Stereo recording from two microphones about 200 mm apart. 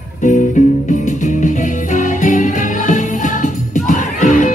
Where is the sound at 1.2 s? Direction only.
40° left (ahead or behind).